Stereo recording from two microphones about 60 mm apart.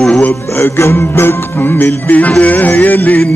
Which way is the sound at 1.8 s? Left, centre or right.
Left.